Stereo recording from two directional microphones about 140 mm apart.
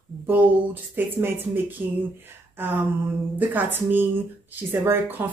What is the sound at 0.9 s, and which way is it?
Speech, 15° right (ahead or behind).